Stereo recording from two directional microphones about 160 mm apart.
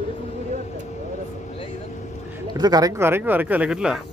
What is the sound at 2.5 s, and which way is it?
Speech, 25° right (ahead or behind).